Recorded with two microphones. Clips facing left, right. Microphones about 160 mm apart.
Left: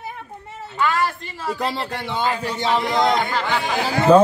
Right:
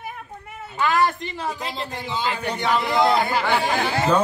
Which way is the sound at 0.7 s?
20° right (ahead or behind).